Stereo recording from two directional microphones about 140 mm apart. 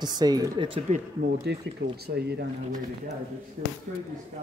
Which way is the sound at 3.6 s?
90° right.